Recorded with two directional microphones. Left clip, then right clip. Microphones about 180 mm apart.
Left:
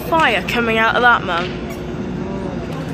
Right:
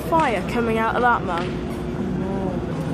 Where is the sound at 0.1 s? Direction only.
Centre (ahead or behind).